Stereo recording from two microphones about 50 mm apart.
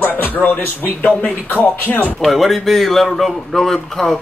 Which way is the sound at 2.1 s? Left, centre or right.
Centre.